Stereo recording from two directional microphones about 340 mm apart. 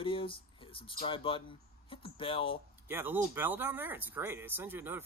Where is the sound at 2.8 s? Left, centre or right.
Centre.